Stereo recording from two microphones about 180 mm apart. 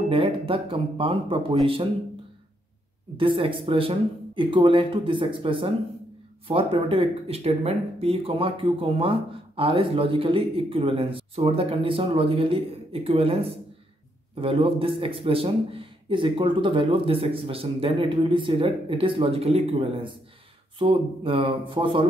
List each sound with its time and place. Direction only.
0.1 s speech: 30° right (ahead or behind)
3.2 s speech: 30° right (ahead or behind)